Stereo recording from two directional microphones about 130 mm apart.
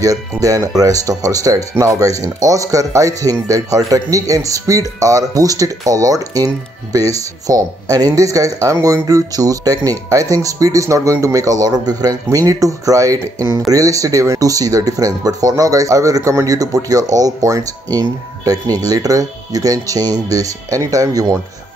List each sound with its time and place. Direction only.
0.0 s speech: 25° right (ahead or behind)